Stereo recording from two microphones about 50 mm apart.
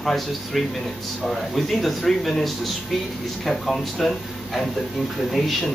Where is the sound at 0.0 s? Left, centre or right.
Centre.